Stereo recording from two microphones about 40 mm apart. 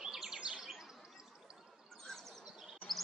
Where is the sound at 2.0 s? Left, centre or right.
Centre.